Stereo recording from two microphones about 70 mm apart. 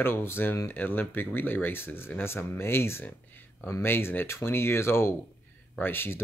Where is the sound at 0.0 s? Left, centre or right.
Left.